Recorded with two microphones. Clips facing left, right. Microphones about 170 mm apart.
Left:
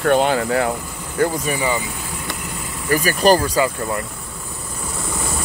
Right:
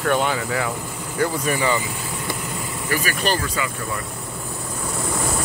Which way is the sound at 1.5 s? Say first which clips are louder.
Even; 10° left (ahead or behind).